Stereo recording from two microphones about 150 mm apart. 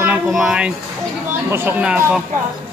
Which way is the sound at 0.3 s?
Centre (ahead or behind).